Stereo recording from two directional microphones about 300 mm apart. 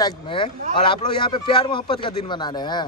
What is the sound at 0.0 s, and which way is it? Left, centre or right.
A man's voice, centre.